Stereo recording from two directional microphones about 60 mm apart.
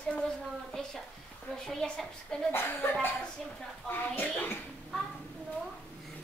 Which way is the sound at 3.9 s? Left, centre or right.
Left.